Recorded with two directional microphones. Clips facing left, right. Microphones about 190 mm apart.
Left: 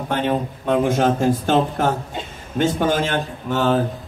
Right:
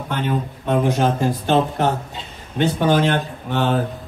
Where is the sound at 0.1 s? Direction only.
50° left (ahead or behind).